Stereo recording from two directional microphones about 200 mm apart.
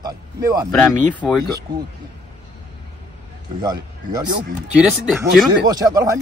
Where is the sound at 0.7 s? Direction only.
15° left (ahead or behind).